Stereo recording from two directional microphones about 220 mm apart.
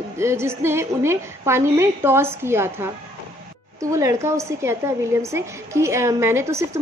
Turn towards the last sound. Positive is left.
turn(degrees=-10)  # may be behind; listen again after turning